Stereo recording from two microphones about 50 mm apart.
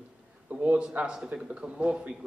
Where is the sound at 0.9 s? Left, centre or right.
Centre.